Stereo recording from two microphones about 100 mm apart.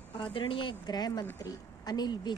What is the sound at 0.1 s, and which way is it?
Speech, 60° left (ahead or behind).